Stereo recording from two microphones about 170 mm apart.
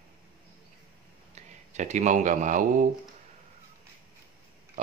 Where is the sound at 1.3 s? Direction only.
45° right (ahead or behind).